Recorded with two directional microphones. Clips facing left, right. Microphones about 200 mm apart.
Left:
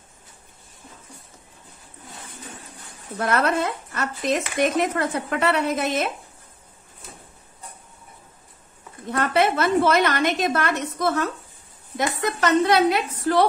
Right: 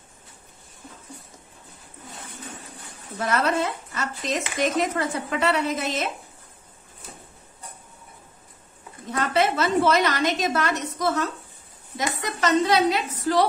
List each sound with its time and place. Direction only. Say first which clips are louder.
3.2 s speech: left 2 dB; 55° left (ahead or behind)
9.1 s speech: left 2 dB; 55° left (ahead or behind)